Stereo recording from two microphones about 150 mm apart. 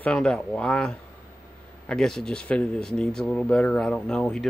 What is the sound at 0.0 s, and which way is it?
Speech, 5° left (ahead or behind).